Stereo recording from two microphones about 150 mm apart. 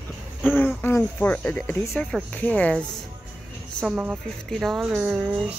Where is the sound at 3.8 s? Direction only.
10° right (ahead or behind).